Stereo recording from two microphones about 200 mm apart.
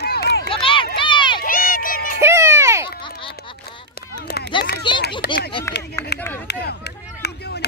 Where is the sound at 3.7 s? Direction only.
50° left (ahead or behind).